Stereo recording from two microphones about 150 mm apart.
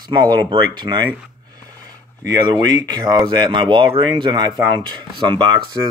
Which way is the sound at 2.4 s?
25° right (ahead or behind).